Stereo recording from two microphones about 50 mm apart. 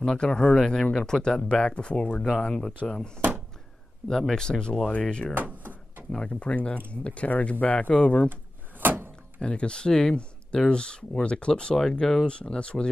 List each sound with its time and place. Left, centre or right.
0.0 s speech: centre
4.1 s speech: centre
5.3 s a sound: right
6.1 s speech: left
8.3 s drawer open or close: right
9.4 s speech: centre